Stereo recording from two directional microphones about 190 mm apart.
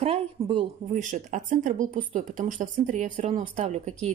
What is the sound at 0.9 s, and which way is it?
Speech, 40° right (ahead or behind).